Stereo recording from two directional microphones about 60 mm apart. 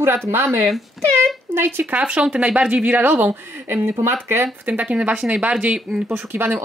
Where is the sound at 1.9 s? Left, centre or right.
Centre; by 4.5 s right.